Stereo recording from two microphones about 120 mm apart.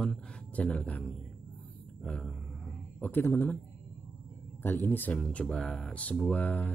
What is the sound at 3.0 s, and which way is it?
Speech, 15° left (ahead or behind).